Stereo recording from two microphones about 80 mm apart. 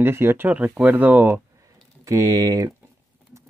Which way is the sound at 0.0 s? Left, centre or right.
Right.